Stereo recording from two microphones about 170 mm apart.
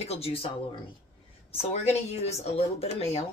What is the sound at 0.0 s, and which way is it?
Speech, 35° left (ahead or behind).